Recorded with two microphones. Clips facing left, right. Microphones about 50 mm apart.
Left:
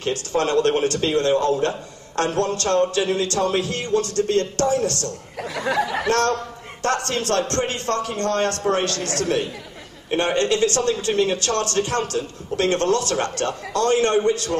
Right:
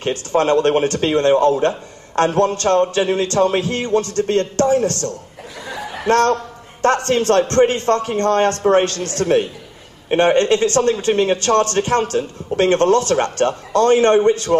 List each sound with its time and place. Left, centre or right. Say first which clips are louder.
0.0 s a man's voice: right 5 dB; right
5.5 s snicker: left 7 dB; left
6.0 s a man's voice: right 5 dB; right